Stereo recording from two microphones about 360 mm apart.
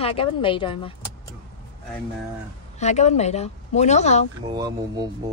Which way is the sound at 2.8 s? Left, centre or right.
Centre.